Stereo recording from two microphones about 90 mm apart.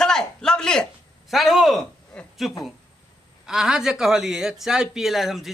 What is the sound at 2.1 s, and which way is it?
Speech, 10° left (ahead or behind).